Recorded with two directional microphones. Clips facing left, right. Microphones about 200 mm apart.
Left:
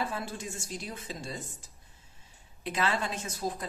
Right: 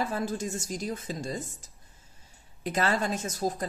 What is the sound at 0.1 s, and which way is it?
A woman's voice, 45° right (ahead or behind).